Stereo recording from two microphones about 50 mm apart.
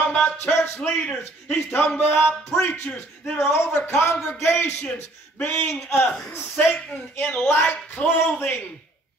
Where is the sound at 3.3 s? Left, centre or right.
Left.